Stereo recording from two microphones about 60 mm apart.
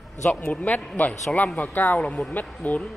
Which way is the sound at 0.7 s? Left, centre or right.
Left.